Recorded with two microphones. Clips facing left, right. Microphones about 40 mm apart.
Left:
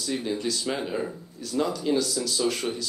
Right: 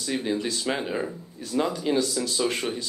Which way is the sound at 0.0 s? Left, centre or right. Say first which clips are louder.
Right 1 dB; right.